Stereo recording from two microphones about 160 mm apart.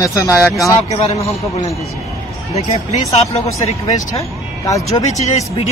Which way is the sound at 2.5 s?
40° left (ahead or behind).